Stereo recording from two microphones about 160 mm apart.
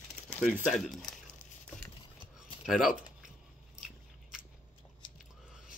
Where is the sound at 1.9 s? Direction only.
30° left (ahead or behind).